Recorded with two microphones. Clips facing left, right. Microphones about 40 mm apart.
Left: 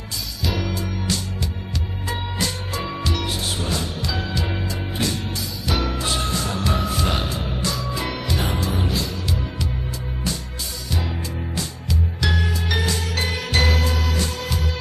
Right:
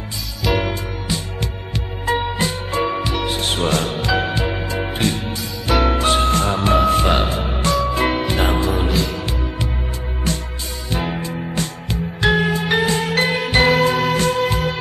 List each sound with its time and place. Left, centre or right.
0.6 s music: right
2.0 s music: right
3.3 s music: right
4.2 s music: right
8.7 s music: centre
10.9 s music: right